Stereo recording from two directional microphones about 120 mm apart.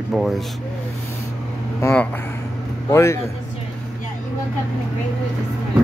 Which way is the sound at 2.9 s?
25° left (ahead or behind).